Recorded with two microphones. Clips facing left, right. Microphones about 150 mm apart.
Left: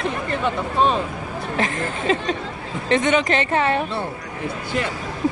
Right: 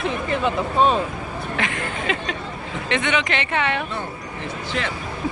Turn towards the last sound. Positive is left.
turn(degrees=35)  # may be behind; listen again after turning